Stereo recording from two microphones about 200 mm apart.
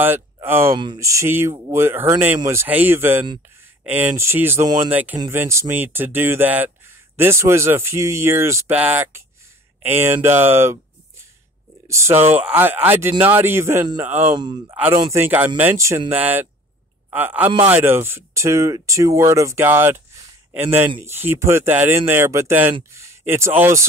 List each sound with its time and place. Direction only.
0.0 s speech: 10° right (ahead or behind)
14.3 s speech: 20° right (ahead or behind)
15.1 s speech: 10° right (ahead or behind)